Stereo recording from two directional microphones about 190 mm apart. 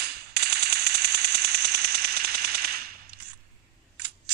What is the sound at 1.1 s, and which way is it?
Machine gun, 55° right (ahead or behind).